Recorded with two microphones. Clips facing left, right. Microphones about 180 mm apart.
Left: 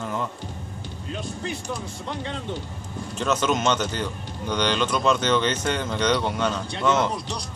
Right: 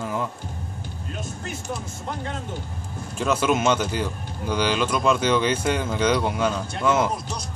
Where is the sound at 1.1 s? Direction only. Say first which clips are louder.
Left 3 dB; 45° right (ahead or behind).